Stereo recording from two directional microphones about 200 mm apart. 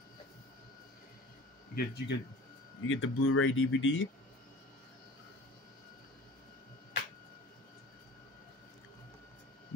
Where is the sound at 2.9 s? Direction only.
85° left.